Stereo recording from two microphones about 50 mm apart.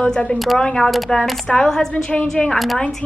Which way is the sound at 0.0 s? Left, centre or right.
Left.